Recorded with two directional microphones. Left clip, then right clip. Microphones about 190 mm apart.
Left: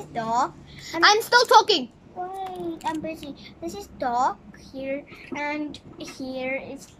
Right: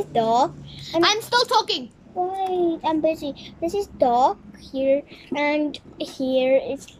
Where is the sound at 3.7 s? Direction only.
25° right (ahead or behind).